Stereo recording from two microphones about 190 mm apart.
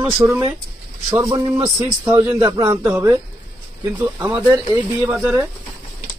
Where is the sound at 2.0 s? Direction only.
15° right (ahead or behind).